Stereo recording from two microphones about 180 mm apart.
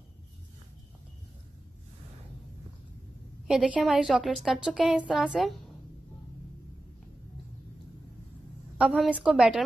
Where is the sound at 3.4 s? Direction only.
5° right (ahead or behind).